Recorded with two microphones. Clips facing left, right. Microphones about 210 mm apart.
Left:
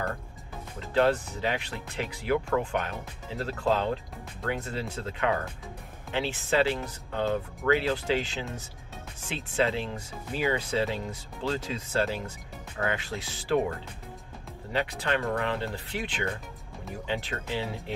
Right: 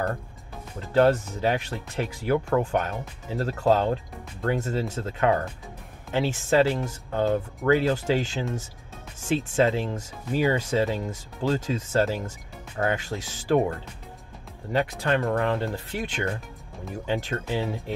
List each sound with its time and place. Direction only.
0.9 s speech: 45° right (ahead or behind)
14.7 s speech: 45° right (ahead or behind)